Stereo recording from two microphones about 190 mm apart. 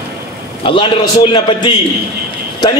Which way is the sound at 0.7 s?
30° left (ahead or behind).